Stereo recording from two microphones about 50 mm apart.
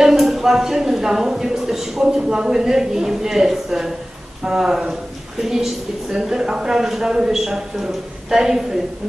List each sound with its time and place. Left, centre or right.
0.0 s a woman's voice: centre